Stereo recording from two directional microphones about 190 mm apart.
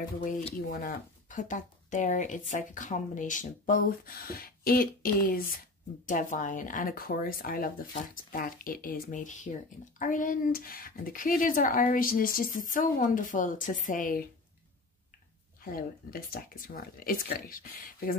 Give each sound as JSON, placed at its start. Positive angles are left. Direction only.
{"t": 0.2, "sound": "speech", "side_deg": 35}
{"t": 0.6, "sound": "speech", "side_deg": 50}
{"t": 15.6, "sound": "speech", "side_deg": 50}